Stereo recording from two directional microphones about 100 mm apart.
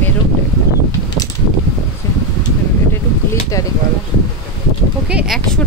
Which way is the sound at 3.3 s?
35° left (ahead or behind).